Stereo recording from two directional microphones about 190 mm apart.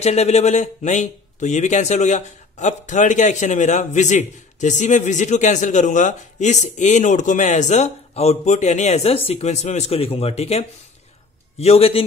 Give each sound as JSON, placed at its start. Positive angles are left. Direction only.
{"t": 0.0, "sound": "speech", "side_deg": 35}